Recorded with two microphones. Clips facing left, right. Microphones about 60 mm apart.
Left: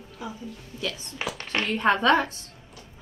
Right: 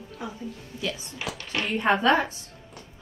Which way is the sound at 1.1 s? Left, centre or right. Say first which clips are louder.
Left 2 dB; left.